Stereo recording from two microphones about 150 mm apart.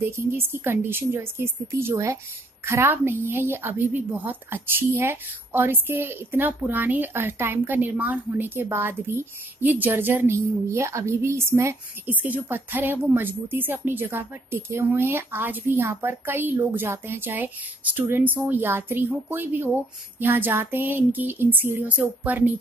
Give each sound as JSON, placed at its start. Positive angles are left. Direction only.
{"t": 0.0, "sound": "a woman's voice", "side_deg": -15}